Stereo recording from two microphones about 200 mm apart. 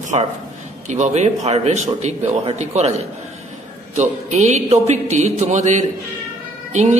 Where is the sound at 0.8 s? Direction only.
35° right (ahead or behind).